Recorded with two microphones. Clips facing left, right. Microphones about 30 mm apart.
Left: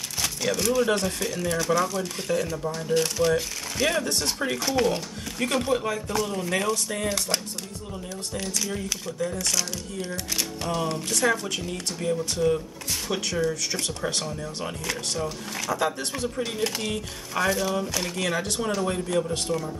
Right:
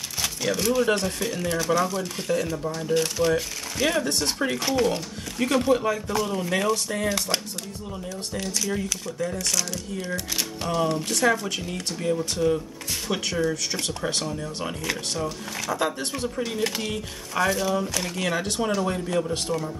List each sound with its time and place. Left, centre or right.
0.2 s speech: centre
8.4 s speech: centre
11.1 s speech: centre
13.1 s speech: centre
15.7 s speech: centre
16.3 s speech: centre
18.4 s speech: centre
18.7 s speech: centre